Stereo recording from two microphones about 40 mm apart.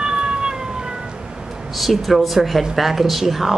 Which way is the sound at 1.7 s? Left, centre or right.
Centre.